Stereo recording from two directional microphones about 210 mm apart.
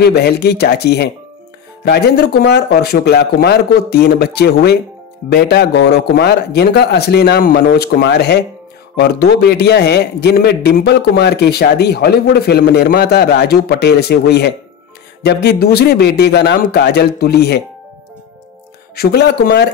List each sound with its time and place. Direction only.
0.0 s a man's voice: 50° left (ahead or behind)
18.9 s a man's voice: 50° left (ahead or behind)